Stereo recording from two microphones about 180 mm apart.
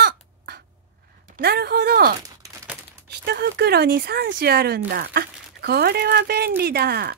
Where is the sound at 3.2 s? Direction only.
65° right (ahead or behind).